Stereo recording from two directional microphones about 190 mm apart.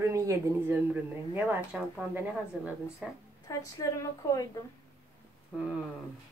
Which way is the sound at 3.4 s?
20° left (ahead or behind).